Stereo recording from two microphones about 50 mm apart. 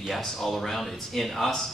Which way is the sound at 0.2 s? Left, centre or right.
Centre.